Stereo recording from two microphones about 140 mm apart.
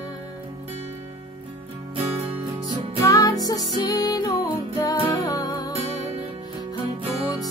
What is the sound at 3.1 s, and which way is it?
Music, 25° left (ahead or behind).